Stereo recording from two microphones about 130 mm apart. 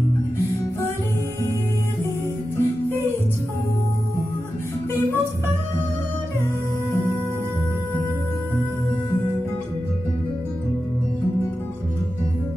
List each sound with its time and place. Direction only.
2.5 s music: 20° left (ahead or behind)